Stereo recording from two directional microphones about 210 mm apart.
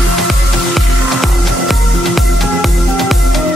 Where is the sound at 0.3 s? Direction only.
Centre (ahead or behind).